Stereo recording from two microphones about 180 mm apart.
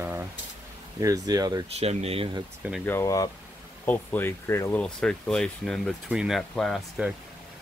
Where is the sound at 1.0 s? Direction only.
20° right (ahead or behind).